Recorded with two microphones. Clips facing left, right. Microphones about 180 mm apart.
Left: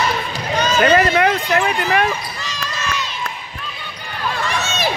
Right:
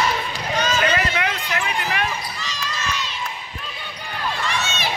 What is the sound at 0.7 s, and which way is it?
Basketball bounce, 45° left (ahead or behind).